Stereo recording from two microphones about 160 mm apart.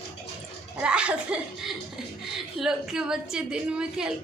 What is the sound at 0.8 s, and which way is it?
A woman's voice, 5° right (ahead or behind).